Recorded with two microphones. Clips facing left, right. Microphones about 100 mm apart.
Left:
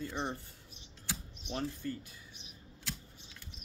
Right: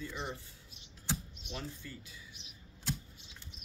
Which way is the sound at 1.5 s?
50° left (ahead or behind).